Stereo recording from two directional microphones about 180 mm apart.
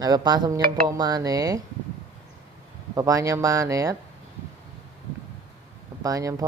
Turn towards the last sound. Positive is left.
turn(degrees=-20)  # may be behind; listen again after turning